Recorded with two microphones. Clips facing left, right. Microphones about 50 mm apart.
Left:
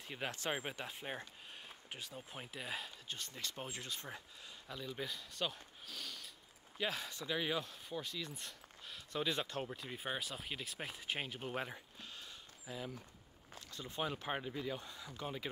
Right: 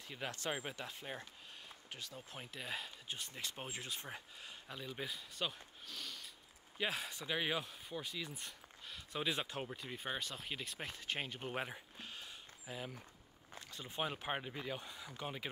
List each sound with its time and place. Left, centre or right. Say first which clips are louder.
0.2 s speech: left 1 dB; left
0.6 s speech: left 1 dB; left
2.3 s speech: even; centre
3.1 s speech: right 1 dB; centre
6.8 s speech: even; centre
7.2 s speech: even; right
7.6 s speech: left 1 dB; centre
9.7 s speech: left 1 dB; centre
11.5 s speech: even; centre
12.0 s a sound: right 1 dB; right
13.5 s speech: left 1 dB; right